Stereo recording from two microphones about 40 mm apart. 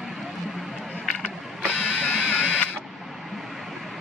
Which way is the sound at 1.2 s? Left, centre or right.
Left.